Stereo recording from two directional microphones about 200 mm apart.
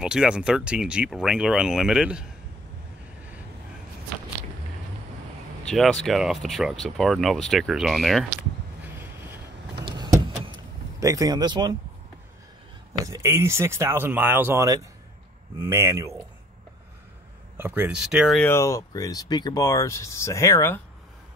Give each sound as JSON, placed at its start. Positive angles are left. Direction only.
{"t": 0.0, "sound": "speech", "side_deg": -5}
{"t": 5.7, "sound": "speech", "side_deg": 5}
{"t": 8.8, "sound": "vehicle", "side_deg": -10}
{"t": 12.9, "sound": "speech", "side_deg": -15}
{"t": 17.6, "sound": "speech", "side_deg": -10}
{"t": 18.4, "sound": "speech", "side_deg": 15}